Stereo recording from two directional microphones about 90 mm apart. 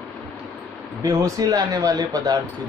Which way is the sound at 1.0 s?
35° right (ahead or behind).